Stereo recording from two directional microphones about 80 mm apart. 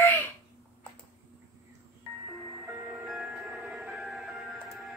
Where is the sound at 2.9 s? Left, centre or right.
Centre.